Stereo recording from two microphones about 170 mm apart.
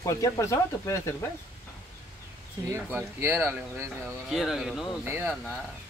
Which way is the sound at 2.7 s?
15° right (ahead or behind).